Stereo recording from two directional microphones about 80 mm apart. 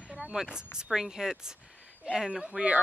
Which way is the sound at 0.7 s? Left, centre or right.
Centre.